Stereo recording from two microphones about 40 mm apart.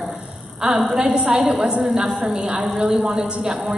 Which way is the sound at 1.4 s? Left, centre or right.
Centre.